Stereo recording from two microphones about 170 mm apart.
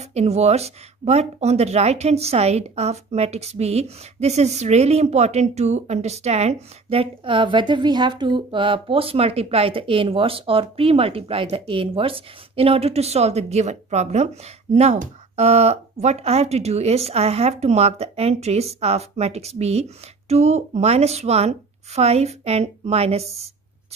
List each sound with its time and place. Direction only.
0.1 s speech: 40° right (ahead or behind)